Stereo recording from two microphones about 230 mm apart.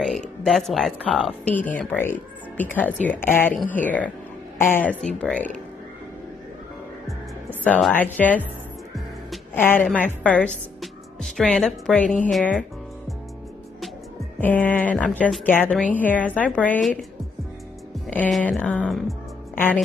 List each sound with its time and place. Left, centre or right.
0.0 s speech: centre
7.6 s a woman's voice: centre
14.4 s speech: centre
18.0 s speech: centre